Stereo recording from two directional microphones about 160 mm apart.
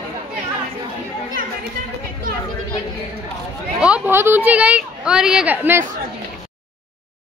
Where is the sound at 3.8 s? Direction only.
10° right (ahead or behind).